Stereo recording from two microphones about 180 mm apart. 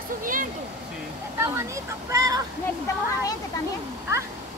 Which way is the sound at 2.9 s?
15° left (ahead or behind).